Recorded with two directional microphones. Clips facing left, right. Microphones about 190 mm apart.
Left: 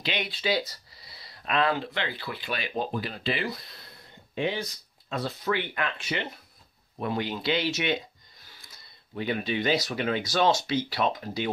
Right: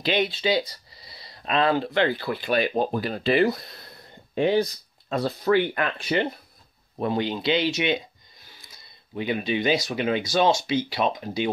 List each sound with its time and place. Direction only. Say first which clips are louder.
0.0 s speech: right 7 dB; 30° right (ahead or behind)
9.1 s speech: right 3 dB; 15° right (ahead or behind)